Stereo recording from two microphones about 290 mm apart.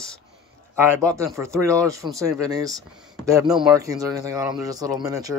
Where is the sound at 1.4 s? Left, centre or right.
Centre.